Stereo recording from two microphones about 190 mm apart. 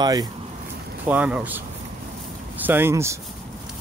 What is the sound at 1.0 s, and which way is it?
Speech, 5° right (ahead or behind).